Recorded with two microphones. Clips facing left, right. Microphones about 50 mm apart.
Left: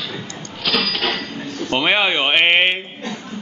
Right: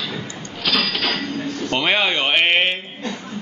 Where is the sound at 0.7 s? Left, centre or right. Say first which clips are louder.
Left 1 dB; centre.